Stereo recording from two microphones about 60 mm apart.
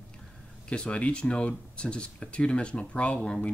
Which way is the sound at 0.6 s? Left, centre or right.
Centre.